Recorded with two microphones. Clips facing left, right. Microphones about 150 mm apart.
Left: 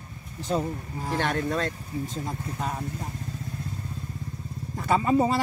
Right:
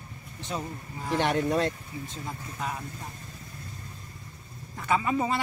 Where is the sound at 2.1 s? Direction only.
35° left (ahead or behind).